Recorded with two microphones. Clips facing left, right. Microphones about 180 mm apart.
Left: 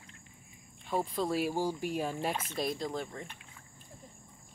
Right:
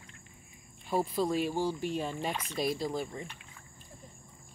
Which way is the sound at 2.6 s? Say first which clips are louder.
Right 5 dB; 5° right (ahead or behind).